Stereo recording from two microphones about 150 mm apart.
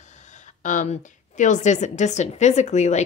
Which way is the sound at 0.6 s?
60° left (ahead or behind).